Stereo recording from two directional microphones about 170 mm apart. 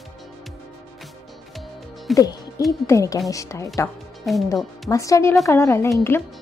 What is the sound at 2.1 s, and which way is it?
Speech, 20° left (ahead or behind).